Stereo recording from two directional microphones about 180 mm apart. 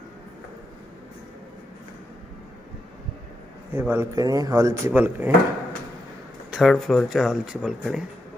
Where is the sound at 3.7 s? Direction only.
10° right (ahead or behind).